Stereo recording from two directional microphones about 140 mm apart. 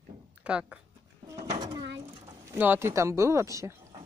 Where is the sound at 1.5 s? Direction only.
30° right (ahead or behind).